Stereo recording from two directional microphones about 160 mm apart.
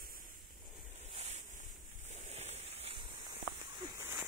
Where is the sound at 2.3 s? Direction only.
40° right (ahead or behind).